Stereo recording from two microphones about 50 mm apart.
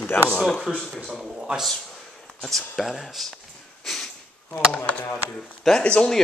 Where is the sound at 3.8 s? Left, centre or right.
Centre.